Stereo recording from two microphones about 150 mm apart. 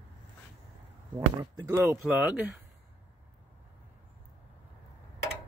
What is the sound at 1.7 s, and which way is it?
Speech, 15° right (ahead or behind).